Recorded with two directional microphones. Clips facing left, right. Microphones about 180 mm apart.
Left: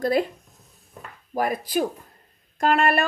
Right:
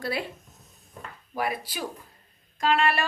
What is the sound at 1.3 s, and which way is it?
A woman's voice, 45° left (ahead or behind).